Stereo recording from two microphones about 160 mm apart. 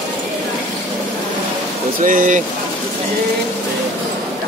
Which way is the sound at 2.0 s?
55° right (ahead or behind).